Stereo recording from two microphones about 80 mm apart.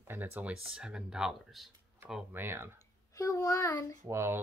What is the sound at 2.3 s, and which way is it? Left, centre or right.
Speech, right.